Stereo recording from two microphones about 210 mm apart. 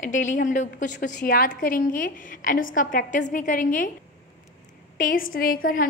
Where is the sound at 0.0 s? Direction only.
35° left (ahead or behind).